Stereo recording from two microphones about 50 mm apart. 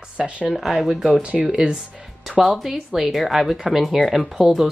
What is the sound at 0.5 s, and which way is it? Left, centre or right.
Speech, centre.